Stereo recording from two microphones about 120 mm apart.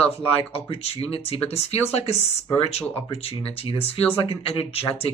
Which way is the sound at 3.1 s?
55° left (ahead or behind).